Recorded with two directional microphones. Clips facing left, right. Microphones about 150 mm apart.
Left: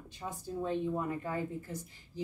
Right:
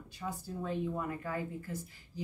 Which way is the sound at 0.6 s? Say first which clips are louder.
Left 3 dB; 25° left (ahead or behind).